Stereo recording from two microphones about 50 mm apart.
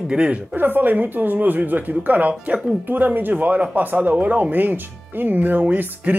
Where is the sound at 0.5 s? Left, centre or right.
Right.